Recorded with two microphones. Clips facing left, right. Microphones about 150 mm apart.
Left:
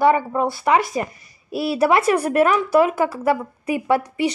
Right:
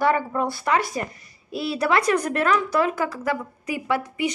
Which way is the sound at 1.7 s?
25° left (ahead or behind).